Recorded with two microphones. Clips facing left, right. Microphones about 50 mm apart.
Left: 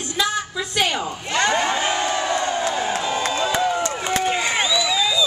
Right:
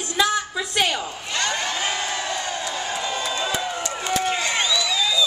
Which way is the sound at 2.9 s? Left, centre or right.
Centre.